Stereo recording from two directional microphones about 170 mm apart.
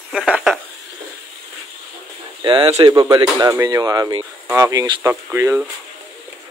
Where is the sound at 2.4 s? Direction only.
30° right (ahead or behind).